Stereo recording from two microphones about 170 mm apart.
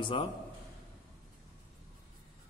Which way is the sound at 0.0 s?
30° left (ahead or behind).